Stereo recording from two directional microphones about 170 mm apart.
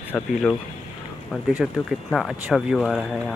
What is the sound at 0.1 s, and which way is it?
Speech, 10° left (ahead or behind).